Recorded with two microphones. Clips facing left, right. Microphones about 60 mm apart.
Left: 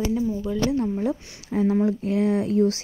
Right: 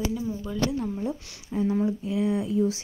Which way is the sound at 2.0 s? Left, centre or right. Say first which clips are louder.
Left 4 dB; left.